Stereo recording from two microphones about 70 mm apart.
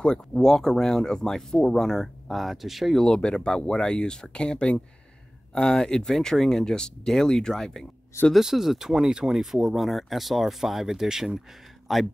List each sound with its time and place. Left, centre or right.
0.0 s speech: centre
3.1 s speech: centre
8.3 s speech: centre